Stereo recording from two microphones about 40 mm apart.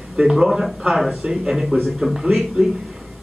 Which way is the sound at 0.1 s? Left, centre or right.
Centre.